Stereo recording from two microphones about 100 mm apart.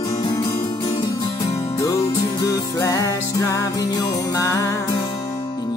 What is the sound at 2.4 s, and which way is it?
Music, 35° left (ahead or behind).